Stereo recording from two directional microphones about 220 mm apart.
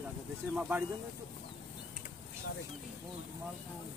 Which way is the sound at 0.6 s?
5° right (ahead or behind).